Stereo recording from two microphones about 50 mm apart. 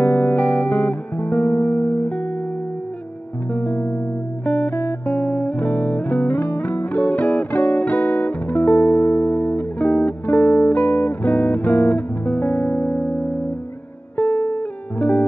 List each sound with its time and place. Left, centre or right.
0.0 s music: left
3.5 s music: left